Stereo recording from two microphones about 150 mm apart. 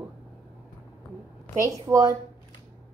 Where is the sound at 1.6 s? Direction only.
20° right (ahead or behind).